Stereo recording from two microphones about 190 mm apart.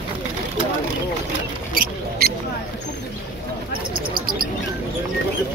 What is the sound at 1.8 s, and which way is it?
Mouse, 50° right (ahead or behind).